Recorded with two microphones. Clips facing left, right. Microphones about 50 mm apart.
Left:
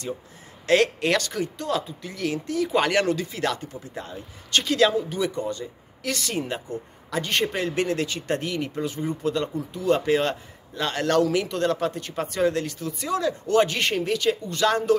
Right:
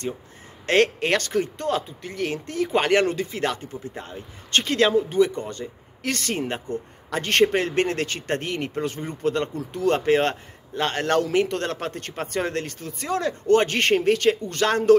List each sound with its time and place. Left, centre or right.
0.7 s speech: right
7.1 s speech: right
11.4 s speech: right